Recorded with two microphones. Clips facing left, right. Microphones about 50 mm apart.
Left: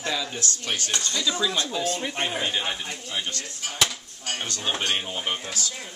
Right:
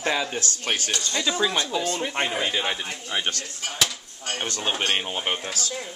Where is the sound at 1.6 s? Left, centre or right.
Centre.